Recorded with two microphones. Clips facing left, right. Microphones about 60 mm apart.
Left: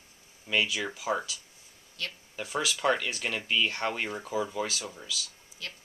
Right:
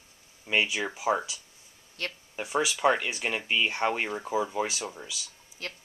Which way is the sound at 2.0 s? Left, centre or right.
Right.